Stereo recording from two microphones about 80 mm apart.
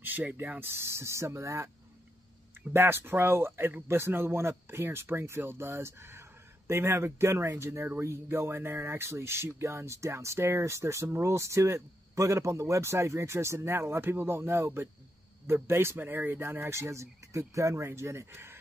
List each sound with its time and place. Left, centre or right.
0.0 s speech: right
2.7 s speech: right